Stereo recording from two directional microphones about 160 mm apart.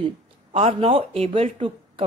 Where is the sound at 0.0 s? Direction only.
40° right (ahead or behind).